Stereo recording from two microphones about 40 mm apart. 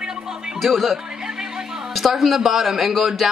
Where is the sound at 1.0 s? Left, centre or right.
Centre.